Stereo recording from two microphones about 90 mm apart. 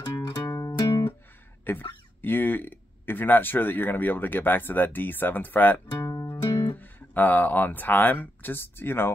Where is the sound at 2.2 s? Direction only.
20° left (ahead or behind).